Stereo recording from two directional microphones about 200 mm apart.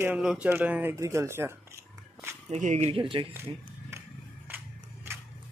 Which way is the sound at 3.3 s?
10° right (ahead or behind).